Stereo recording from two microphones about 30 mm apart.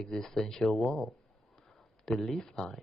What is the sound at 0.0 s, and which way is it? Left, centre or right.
Speech, centre.